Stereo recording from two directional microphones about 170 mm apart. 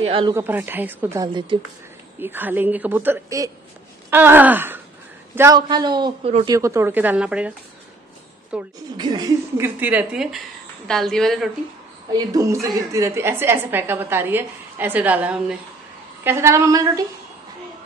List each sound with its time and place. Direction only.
0.0 s a woman's voice: 35° right (ahead or behind)
0.3 s a woman's voice: 10° right (ahead or behind)
1.2 s a man's voice: 25° right (ahead or behind)
2.1 s a woman's voice: 10° right (ahead or behind)
5.7 s a man's voice: 25° right (ahead or behind); by 8.7 s 5° right (ahead or behind)
8.9 s a man's voice: 25° right (ahead or behind)
9.6 s a woman's voice: 10° right (ahead or behind)
12.1 s a man's voice: 20° right (ahead or behind)